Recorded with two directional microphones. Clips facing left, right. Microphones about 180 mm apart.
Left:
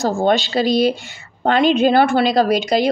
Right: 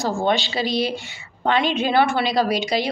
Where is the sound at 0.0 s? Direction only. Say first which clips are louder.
Left 4 dB; 45° left (ahead or behind).